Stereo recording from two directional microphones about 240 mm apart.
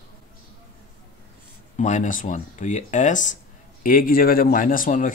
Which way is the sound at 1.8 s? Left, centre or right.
Left.